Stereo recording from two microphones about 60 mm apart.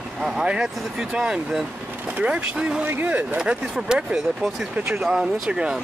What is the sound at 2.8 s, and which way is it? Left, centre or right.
Speech, right.